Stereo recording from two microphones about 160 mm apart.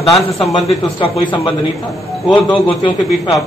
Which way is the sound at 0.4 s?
Centre (ahead or behind).